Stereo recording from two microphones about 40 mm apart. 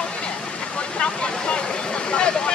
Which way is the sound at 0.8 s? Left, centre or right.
Left.